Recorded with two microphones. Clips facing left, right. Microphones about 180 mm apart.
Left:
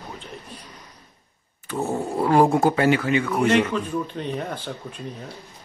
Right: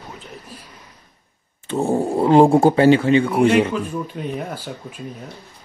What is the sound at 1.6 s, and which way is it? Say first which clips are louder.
Speech: right 6 dB; 30° right (ahead or behind).